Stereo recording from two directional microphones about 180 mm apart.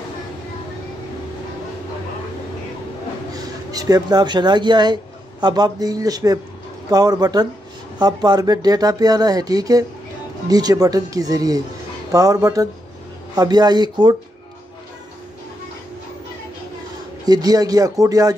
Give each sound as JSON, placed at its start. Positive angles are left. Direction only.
{"t": 3.3, "sound": "speech", "side_deg": -20}
{"t": 17.2, "sound": "speech", "side_deg": -20}